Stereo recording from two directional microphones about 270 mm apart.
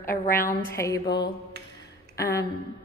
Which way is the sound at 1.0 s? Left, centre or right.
Left.